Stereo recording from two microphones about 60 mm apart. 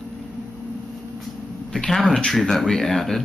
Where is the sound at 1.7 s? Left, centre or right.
Centre.